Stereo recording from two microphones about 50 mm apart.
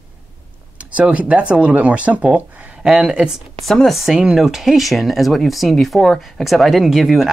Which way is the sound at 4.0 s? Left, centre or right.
Centre.